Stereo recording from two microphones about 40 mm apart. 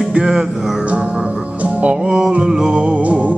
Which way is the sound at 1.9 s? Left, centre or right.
Right.